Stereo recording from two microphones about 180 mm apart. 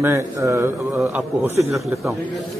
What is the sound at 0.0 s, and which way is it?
A man's voice, 15° right (ahead or behind).